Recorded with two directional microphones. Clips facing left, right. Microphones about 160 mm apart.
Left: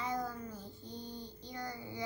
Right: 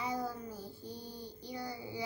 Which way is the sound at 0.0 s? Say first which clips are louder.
Right 1 dB; 10° right (ahead or behind).